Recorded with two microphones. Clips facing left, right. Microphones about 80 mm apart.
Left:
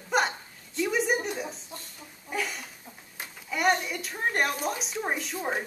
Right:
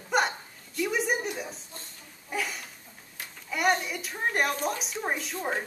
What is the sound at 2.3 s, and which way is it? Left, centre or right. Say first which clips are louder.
A woman's voice: even; centre.